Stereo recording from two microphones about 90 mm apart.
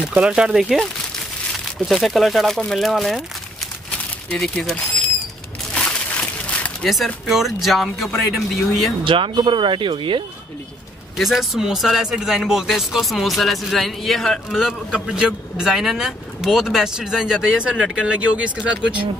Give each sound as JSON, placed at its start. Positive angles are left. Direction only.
{"t": 0.0, "sound": "speech", "side_deg": -10}
{"t": 1.9, "sound": "speech", "side_deg": 0}
{"t": 4.4, "sound": "speech", "side_deg": 5}
{"t": 6.8, "sound": "speech", "side_deg": 5}
{"t": 9.0, "sound": "speech", "side_deg": -70}
{"t": 11.1, "sound": "speech", "side_deg": -5}